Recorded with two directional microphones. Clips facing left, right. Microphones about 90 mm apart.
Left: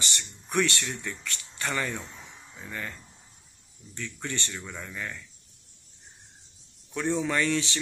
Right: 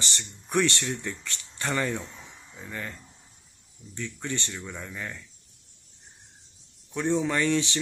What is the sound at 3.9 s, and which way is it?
Speech, 15° right (ahead or behind).